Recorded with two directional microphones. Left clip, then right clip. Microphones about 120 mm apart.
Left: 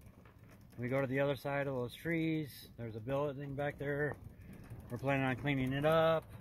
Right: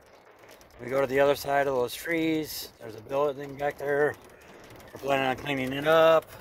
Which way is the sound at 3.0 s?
10° right (ahead or behind).